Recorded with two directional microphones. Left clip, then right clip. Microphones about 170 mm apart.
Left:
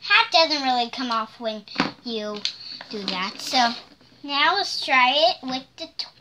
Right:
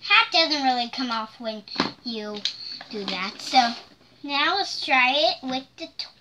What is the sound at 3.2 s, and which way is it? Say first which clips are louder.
A woman's voice: right 1 dB; 40° left (ahead or behind).